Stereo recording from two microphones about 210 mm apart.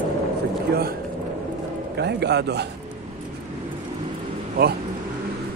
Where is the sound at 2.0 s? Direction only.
50° right (ahead or behind).